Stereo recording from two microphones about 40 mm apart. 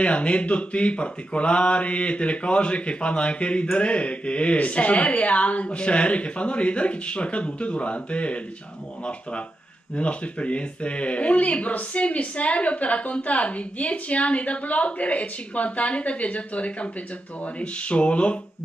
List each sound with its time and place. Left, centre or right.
0.0 s speech: left
9.9 s speech: left